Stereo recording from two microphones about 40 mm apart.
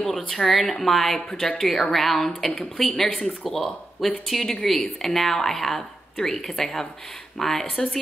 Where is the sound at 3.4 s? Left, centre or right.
Centre.